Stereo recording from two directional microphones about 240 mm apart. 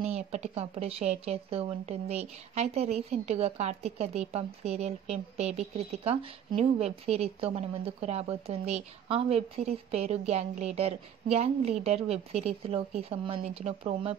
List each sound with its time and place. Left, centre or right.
0.0 s speech: right